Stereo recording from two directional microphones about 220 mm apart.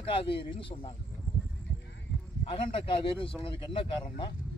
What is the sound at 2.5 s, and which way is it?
A man's voice, 25° left (ahead or behind).